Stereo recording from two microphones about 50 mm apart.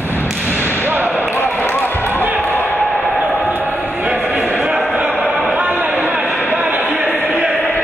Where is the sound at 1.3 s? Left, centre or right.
Left.